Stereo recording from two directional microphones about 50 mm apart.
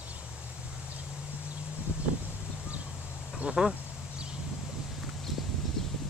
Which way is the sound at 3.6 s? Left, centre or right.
Centre.